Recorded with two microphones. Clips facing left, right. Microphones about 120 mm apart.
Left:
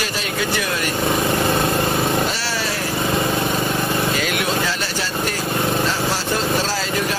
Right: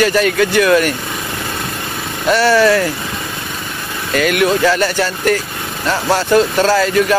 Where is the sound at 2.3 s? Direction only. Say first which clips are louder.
Right 13 dB; 60° right (ahead or behind).